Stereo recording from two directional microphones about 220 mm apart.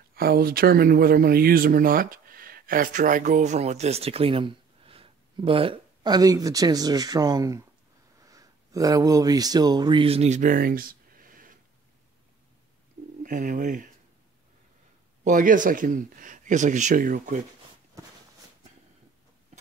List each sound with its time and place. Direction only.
0.1 s speech: 45° right (ahead or behind)
13.2 s speech: 35° right (ahead or behind)
15.2 s speech: 35° right (ahead or behind)
18.0 s walk: 15° right (ahead or behind)